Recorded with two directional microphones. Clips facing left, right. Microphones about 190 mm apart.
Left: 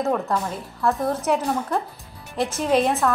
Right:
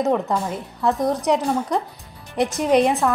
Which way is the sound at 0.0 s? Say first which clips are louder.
Right 2 dB; 15° right (ahead or behind).